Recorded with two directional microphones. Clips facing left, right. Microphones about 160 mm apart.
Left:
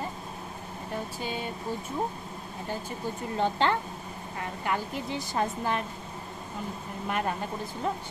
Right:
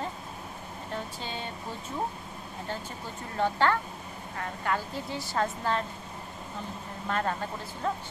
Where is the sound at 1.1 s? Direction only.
10° left (ahead or behind).